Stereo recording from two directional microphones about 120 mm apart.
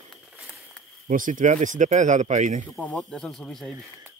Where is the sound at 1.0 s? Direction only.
90° right.